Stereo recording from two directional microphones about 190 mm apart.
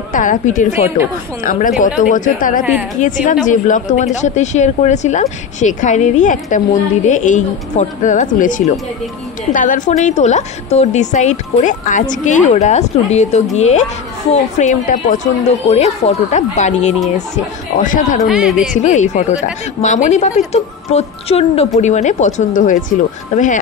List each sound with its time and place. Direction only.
0.1 s a woman's voice: 45° left (ahead or behind)
18.2 s a woman's voice: centre (ahead or behind)
18.7 s speech: 40° left (ahead or behind)